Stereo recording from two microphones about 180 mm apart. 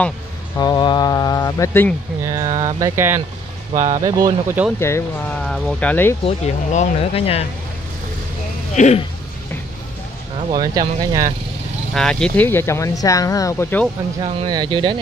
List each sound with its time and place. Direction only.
0.6 s speech: 25° left (ahead or behind)
2.4 s a sound: 40° right (ahead or behind)
2.8 s speech: 15° right (ahead or behind)
4.7 s speech: 15° left (ahead or behind)
6.2 s speech: 40° left (ahead or behind)
8.7 s speech: 40° left (ahead or behind)
10.5 s speech: 20° right (ahead or behind)
11.9 s speech: 5° left (ahead or behind)
14.2 s speech: 25° right (ahead or behind)